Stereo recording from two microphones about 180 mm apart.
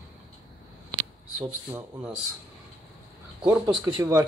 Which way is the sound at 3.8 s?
20° right (ahead or behind).